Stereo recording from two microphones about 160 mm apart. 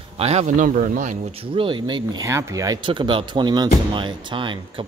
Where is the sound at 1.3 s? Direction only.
35° right (ahead or behind).